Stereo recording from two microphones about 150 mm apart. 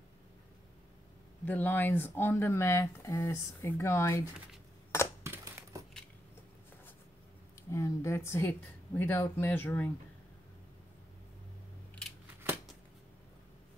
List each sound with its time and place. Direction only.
1.4 s speech: 15° left (ahead or behind)
5.2 s a sound: 15° right (ahead or behind)
7.7 s speech: 20° left (ahead or behind)